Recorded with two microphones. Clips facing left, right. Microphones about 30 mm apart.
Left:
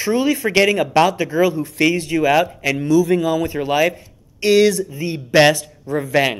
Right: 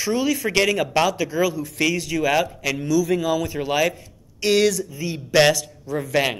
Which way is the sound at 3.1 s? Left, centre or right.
Left.